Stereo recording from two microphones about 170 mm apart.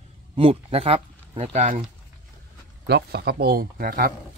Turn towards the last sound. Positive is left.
turn(degrees=-60)  # may be behind; listen again after turning